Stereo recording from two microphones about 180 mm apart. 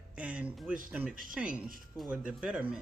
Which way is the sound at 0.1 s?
5° right (ahead or behind).